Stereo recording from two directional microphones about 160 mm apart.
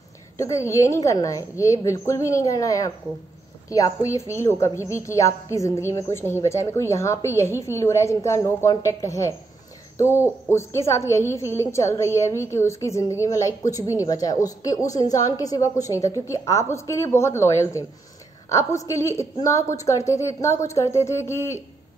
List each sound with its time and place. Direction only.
0.4 s a woman's voice: 20° left (ahead or behind)
9.9 s hoot: 15° left (ahead or behind)
10.5 s a woman's voice: 15° left (ahead or behind)